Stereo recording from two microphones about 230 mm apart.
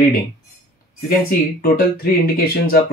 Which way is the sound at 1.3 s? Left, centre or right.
Left.